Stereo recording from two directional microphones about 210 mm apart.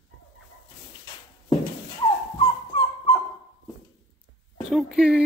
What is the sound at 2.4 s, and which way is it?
Dog, 25° left (ahead or behind).